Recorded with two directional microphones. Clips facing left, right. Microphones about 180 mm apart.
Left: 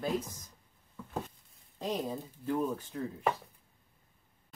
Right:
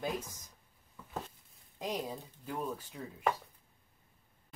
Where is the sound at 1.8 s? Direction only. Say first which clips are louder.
Left 3 dB; 10° right (ahead or behind).